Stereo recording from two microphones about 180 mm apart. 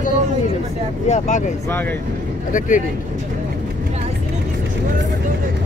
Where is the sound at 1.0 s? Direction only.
40° left (ahead or behind).